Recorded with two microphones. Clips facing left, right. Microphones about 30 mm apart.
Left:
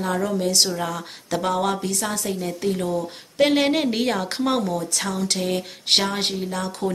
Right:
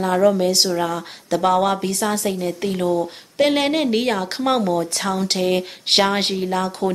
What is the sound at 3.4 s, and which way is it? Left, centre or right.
Speech, centre.